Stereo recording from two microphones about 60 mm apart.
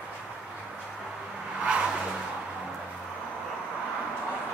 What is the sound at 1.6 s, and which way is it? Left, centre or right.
Vehicle, centre.